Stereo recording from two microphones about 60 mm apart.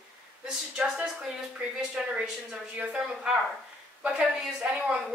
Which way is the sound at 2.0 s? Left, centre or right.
Centre.